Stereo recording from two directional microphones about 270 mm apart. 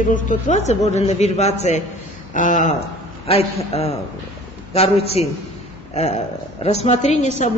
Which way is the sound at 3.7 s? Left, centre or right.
Left.